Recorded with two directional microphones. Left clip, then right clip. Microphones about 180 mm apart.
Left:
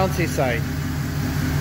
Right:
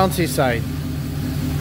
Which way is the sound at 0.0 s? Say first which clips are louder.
Right 3 dB; 30° right (ahead or behind).